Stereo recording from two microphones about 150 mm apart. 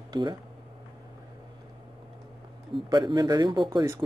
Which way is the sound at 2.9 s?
30° right (ahead or behind).